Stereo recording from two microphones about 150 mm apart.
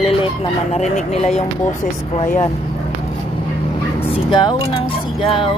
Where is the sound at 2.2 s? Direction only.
20° left (ahead or behind).